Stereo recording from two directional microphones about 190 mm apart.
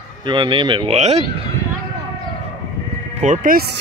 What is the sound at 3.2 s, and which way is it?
Speech, 45° right (ahead or behind).